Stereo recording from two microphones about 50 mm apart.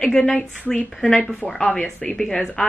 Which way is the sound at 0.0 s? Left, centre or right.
Centre.